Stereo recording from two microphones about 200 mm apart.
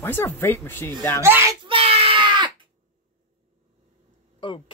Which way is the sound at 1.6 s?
30° right (ahead or behind).